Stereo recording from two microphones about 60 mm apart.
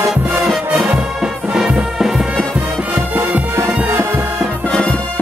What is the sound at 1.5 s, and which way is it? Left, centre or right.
Music, centre.